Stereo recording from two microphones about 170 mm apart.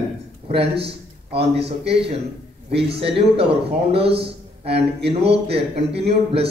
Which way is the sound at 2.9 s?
35° right (ahead or behind).